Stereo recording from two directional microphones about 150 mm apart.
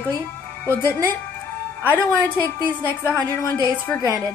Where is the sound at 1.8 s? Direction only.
15° right (ahead or behind).